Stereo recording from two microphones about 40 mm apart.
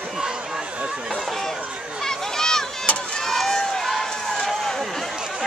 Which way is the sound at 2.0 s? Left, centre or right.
Centre.